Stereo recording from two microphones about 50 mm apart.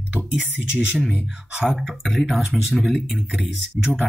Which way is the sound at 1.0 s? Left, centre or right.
Centre.